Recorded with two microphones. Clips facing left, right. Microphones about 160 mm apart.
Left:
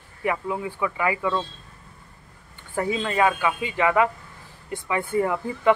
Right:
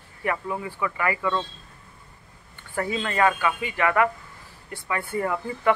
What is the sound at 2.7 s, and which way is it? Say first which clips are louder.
Speech: left 2 dB; 10° left (ahead or behind).